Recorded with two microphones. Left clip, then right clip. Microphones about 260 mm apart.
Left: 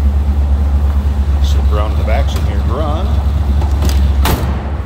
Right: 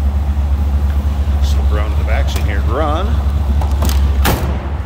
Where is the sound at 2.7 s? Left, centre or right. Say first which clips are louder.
Right 3 dB; centre.